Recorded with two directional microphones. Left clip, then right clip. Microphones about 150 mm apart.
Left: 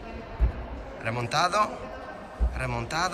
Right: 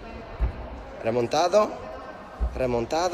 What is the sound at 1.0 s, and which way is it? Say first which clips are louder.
A man's voice: right 3 dB; 15° right (ahead or behind).